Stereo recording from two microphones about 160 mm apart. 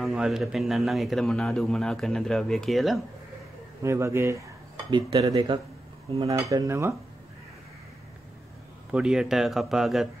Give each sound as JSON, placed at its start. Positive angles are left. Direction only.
{"t": 0.0, "sound": "a man's voice", "side_deg": 0}
{"t": 3.8, "sound": "speech", "side_deg": -15}
{"t": 6.1, "sound": "cutlery", "side_deg": -35}
{"t": 6.5, "sound": "speech", "side_deg": -15}
{"t": 8.9, "sound": "a man's voice", "side_deg": -5}